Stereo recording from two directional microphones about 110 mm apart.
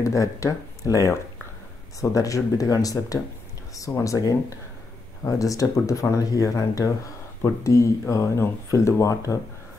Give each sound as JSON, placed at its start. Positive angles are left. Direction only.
{"t": 0.0, "sound": "speech", "side_deg": 30}